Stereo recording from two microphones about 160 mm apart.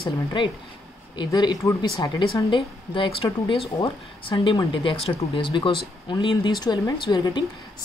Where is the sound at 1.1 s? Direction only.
25° left (ahead or behind).